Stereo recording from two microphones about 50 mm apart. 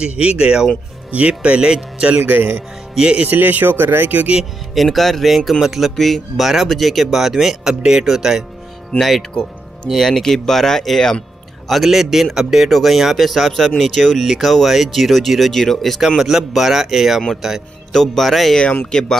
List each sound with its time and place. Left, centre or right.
0.0 s speech: right
2.1 s a man's voice: right
3.0 s speech: right
3.3 s speech: right
4.1 s speech: right
4.7 s a man's voice: centre
8.9 s a man's voice: centre
16.2 s a man's voice: centre
17.9 s speech: centre
18.9 s speech: centre